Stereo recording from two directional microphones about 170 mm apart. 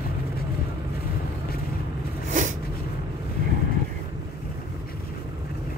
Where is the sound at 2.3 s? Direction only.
45° right (ahead or behind).